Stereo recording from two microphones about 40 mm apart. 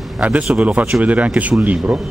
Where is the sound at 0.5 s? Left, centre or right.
Right.